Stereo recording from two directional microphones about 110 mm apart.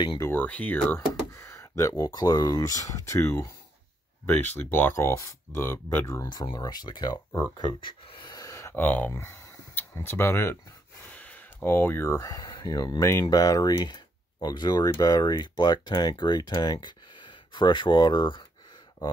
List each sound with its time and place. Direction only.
0.3 s speech: 15° left (ahead or behind)
0.9 s speech: 25° left (ahead or behind)
4.3 s speech: 20° left (ahead or behind)
6.2 s speech: 40° left (ahead or behind)